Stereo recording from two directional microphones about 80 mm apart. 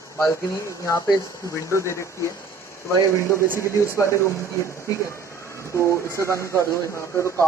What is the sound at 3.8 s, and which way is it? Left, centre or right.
Speech, left.